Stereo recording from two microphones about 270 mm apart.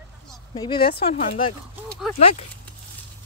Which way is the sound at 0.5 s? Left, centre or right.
Centre.